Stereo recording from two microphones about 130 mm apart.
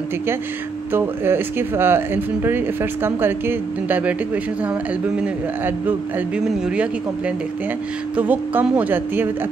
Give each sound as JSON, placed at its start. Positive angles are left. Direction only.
{"t": 0.9, "sound": "speech", "side_deg": -15}
{"t": 5.9, "sound": "speech", "side_deg": -10}